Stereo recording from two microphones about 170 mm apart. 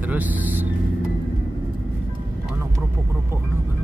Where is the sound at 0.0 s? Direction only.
10° right (ahead or behind).